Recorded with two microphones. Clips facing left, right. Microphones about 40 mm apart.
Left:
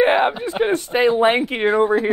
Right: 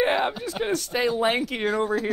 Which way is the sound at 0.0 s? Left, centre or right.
Left.